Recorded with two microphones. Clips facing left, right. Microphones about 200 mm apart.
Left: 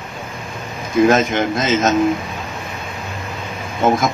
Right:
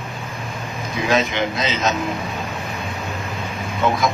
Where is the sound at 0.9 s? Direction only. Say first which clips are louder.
Left 7 dB; 50° left (ahead or behind).